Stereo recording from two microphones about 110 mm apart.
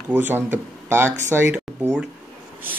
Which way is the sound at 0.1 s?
15° right (ahead or behind).